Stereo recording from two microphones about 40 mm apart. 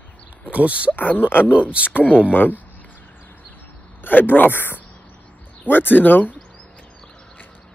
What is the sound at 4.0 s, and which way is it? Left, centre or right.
Speech, left.